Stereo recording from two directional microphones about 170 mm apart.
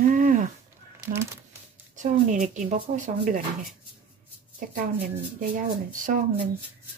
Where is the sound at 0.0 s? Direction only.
50° right (ahead or behind).